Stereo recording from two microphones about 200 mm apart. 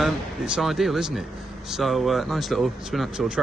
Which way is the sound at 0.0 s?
Centre (ahead or behind).